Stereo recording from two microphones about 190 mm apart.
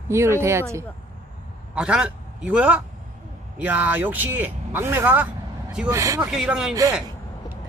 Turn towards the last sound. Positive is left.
turn(degrees=-5)  # may be behind; listen again after turning